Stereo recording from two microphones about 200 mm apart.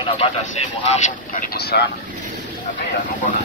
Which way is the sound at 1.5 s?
55° left (ahead or behind).